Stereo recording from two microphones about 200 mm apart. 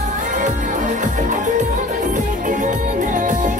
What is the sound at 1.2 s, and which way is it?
Music, 40° right (ahead or behind).